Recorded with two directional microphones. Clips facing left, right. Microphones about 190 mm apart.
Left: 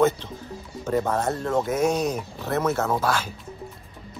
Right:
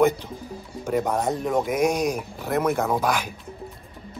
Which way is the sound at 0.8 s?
10° right (ahead or behind).